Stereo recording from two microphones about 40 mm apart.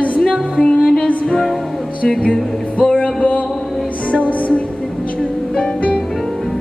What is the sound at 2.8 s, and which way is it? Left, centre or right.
Music, left.